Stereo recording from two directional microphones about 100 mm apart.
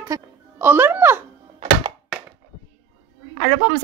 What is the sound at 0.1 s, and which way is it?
Speech, 20° right (ahead or behind).